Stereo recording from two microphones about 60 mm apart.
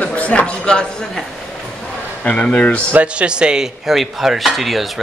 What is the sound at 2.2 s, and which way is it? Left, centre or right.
Speech, left.